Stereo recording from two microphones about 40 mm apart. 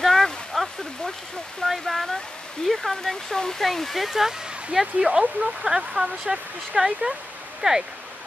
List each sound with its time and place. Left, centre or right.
0.0 s a sound: centre
1.7 s speech: centre
4.9 s speech: right